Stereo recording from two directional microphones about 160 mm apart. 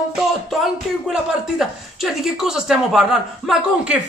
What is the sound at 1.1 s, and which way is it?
Speech, 5° right (ahead or behind).